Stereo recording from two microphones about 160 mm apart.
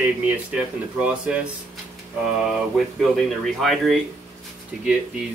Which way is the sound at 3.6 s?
Centre (ahead or behind).